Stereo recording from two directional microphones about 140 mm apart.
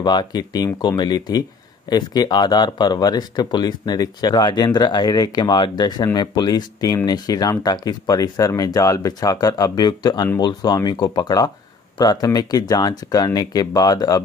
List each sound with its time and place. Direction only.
0.0 s speech: 30° left (ahead or behind)